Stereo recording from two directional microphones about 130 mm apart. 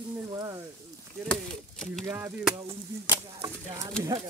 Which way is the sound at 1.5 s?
5° left (ahead or behind).